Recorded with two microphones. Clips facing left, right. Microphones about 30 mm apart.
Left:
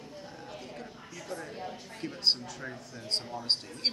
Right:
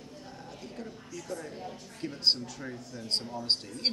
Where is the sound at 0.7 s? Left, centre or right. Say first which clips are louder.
Right 2 dB; centre.